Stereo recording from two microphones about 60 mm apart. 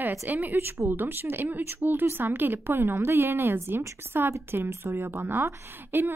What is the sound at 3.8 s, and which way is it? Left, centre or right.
Speech, right.